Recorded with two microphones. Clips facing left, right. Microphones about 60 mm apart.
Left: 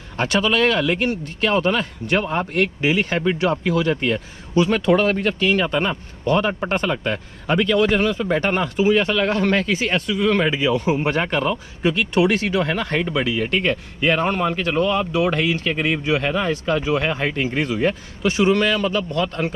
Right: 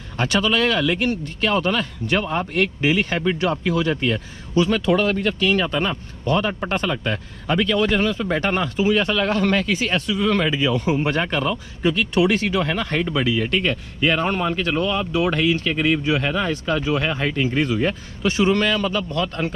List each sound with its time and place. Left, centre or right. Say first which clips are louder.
0.2 s speech: left 1 dB; left
4.6 s speech: left 1 dB; left
8.6 s speech: left 2 dB; left
11.2 s speech: left 1 dB; left
13.4 s speech: left 1 dB; left